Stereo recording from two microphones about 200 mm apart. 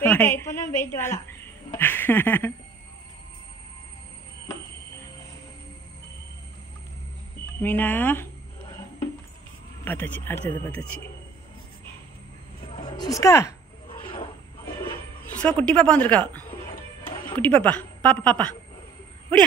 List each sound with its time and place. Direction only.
0.0 s a woman's voice: 10° left (ahead or behind)
7.6 s speech: 10° left (ahead or behind)
9.8 s speech: 10° left (ahead or behind)
12.7 s a sound: 20° left (ahead or behind)
13.2 s speech: 15° left (ahead or behind)
13.8 s a sound: 25° left (ahead or behind)
15.4 s speech: 5° left (ahead or behind)